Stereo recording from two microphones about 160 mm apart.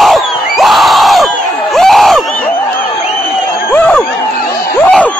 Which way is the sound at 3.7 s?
10° left (ahead or behind).